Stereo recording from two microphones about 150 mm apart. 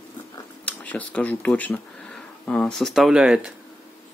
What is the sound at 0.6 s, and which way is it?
Speech, 10° left (ahead or behind).